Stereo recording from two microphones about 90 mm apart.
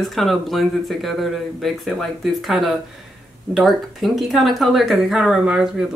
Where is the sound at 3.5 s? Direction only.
Centre (ahead or behind).